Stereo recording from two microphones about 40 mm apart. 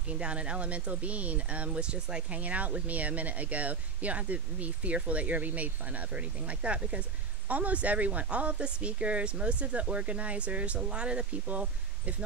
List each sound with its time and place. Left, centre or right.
0.1 s speech: right
2.3 s speech: right